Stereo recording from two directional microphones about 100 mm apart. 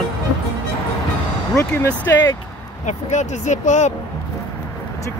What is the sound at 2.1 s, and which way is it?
Speech, 30° left (ahead or behind).